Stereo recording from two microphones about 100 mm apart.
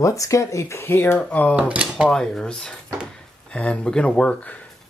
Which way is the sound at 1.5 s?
15° right (ahead or behind).